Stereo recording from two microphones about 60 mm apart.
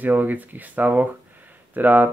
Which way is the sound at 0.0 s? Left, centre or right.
Right.